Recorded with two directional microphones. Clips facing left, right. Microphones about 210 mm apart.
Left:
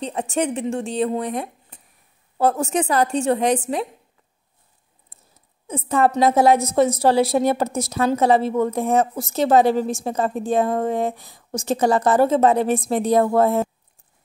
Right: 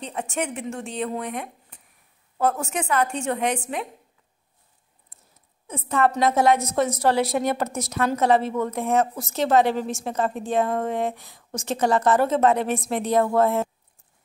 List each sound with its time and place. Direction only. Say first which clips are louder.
0.0 s a woman's voice: left 6 dB; 35° left (ahead or behind)
5.7 s a woman's voice: left 3 dB; 30° left (ahead or behind)